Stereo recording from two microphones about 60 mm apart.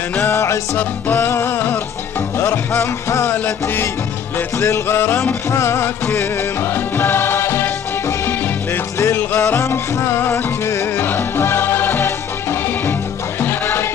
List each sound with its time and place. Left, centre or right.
0.3 s music: left
2.8 s music: left
4.6 s music: left
9.0 s music: left